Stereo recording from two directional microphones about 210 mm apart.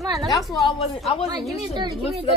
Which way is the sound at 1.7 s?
20° right (ahead or behind).